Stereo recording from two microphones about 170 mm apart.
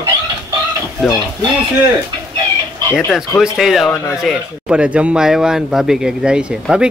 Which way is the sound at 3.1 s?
Centre (ahead or behind).